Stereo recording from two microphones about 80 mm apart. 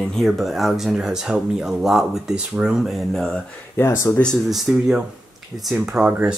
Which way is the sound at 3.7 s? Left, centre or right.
Left.